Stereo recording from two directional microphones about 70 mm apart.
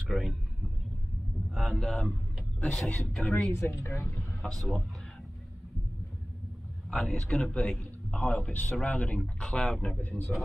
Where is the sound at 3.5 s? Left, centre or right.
Left.